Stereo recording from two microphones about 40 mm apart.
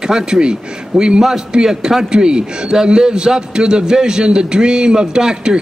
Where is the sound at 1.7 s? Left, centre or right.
Centre.